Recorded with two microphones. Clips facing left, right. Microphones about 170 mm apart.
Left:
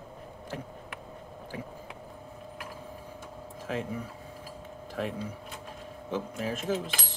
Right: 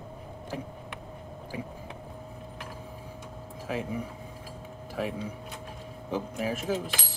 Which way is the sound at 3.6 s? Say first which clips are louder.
Right 1 dB; 10° right (ahead or behind).